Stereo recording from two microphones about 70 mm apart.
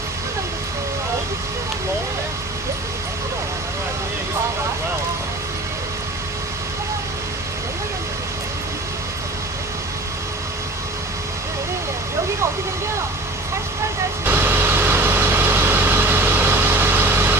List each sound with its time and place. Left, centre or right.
14.2 s vehicle: right